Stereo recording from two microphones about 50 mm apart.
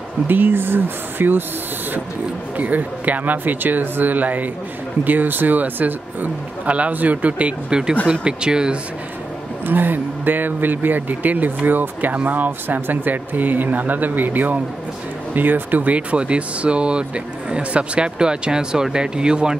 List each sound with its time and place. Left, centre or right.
0.3 s speech: right
2.5 s speech: right
8.1 s speech: centre
9.7 s speech: right; by 19.5 s centre